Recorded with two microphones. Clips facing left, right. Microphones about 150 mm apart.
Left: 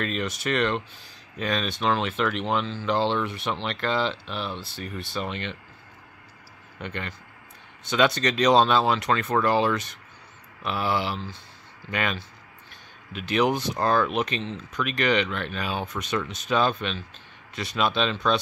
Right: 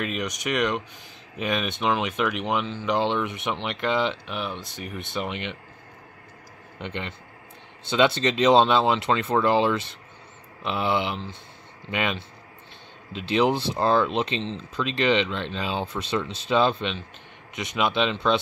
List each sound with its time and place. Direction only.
0.0 s speech: 15° right (ahead or behind)
6.8 s speech: 25° right (ahead or behind)